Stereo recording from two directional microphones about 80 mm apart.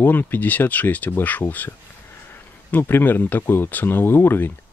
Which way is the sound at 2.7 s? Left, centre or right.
Left.